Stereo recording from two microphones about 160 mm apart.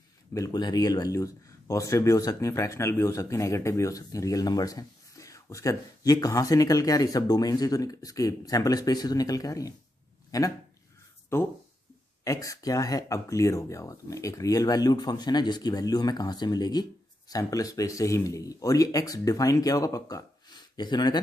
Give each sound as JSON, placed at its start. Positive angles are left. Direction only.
{"t": 0.3, "sound": "speech", "side_deg": 25}